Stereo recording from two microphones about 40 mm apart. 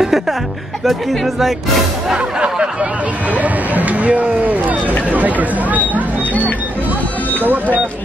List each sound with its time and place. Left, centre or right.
0.8 s speech: centre
2.1 s speech: right
3.3 s speech: right